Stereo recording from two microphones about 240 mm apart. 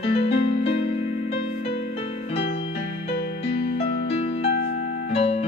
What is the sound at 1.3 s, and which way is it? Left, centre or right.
Music, left.